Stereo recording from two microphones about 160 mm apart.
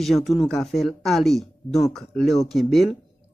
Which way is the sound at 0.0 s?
Centre (ahead or behind).